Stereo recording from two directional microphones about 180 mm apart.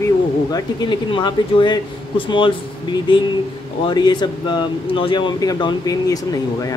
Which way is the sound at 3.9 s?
25° left (ahead or behind).